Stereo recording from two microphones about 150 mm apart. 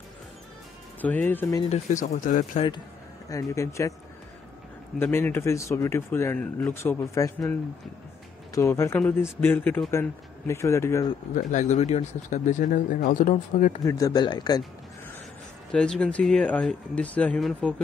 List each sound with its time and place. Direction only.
1.0 s speech: 10° left (ahead or behind)
1.9 s speech: 55° left (ahead or behind)
3.3 s speech: 20° left (ahead or behind)
4.9 s speech: 15° left (ahead or behind)
8.5 s speech: 20° left (ahead or behind)
11.3 s speech: 55° left (ahead or behind)
13.8 s speech: 25° left (ahead or behind)
15.7 s speech: 5° left (ahead or behind)